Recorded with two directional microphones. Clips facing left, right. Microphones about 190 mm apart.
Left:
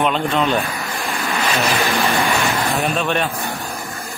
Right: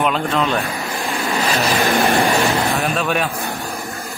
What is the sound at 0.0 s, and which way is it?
Speech, centre (ahead or behind).